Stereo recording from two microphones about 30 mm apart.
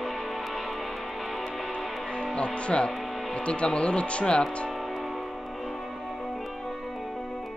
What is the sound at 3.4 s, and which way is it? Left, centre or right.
Speech, left.